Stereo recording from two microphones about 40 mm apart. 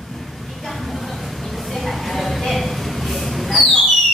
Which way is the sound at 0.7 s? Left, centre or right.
Centre.